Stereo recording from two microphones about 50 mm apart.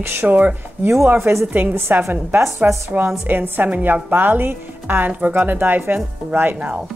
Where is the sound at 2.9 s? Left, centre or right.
Right.